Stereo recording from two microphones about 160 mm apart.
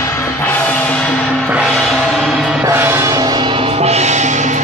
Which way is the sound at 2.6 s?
15° right (ahead or behind).